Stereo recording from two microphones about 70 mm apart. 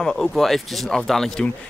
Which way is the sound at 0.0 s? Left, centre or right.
Centre.